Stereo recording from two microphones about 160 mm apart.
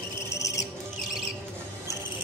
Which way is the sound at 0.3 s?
20° left (ahead or behind).